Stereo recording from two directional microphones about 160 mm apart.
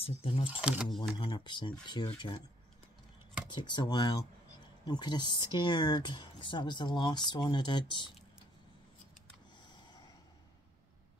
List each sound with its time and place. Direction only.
0.0 s speech: 35° left (ahead or behind)
0.5 s speech: 5° right (ahead or behind)
1.1 s speech: 25° left (ahead or behind)
3.5 s speech: 25° left (ahead or behind)